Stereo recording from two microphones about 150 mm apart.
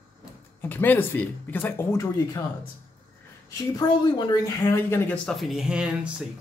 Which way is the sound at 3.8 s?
25° left (ahead or behind).